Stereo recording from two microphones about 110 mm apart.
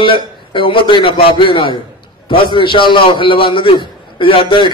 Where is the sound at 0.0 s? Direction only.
50° left (ahead or behind).